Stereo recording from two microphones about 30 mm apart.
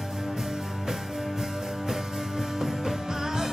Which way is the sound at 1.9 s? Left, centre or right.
Centre.